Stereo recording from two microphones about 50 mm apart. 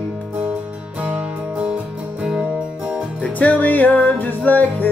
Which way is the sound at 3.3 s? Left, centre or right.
Left.